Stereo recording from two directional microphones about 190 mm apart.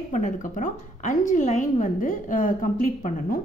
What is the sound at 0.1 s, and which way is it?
Speech, 40° left (ahead or behind).